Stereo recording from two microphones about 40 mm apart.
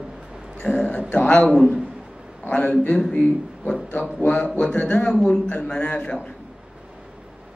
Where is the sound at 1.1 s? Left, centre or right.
Left.